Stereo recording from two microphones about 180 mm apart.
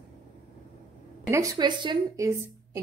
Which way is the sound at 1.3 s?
20° right (ahead or behind).